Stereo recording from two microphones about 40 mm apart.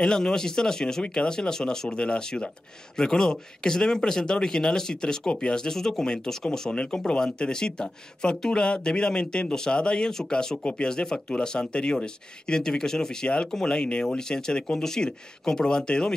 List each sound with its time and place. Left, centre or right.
0.0 s speech: centre
6.7 s speech: left